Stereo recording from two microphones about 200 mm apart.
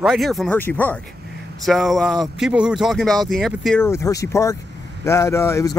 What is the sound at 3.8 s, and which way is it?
Speech, 15° left (ahead or behind).